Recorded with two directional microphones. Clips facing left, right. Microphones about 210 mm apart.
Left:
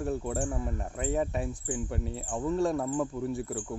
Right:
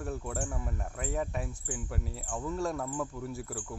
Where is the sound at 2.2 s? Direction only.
20° left (ahead or behind).